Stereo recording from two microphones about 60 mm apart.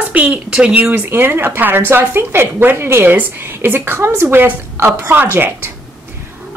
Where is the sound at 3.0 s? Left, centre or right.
Right.